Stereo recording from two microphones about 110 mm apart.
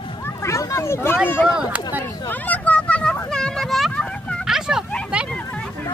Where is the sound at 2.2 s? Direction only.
15° left (ahead or behind).